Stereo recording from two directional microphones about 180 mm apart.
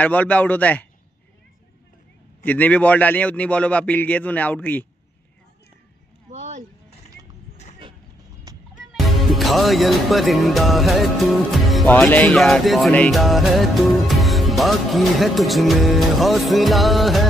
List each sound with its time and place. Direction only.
0.0 s a man's voice: 10° left (ahead or behind)
2.4 s a man's voice: 10° left (ahead or behind)
6.3 s a sound: 40° right (ahead or behind)
8.5 s music: 20° right (ahead or behind)
8.9 s speech: centre (ahead or behind)
11.9 s music: 10° left (ahead or behind)